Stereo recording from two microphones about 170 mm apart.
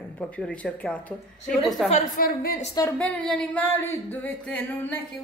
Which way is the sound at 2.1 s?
60° left (ahead or behind).